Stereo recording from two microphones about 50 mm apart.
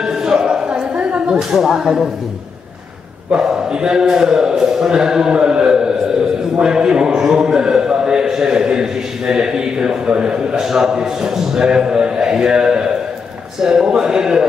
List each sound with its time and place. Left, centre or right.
0.0 s a sound: centre
1.5 s a man's voice: centre
3.3 s a man's voice: centre